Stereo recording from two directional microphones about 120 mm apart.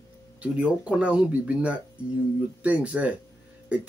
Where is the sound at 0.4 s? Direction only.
10° right (ahead or behind).